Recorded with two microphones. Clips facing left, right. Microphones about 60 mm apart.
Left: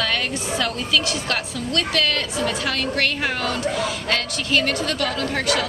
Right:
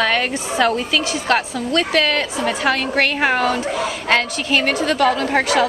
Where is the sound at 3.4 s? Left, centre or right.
Right.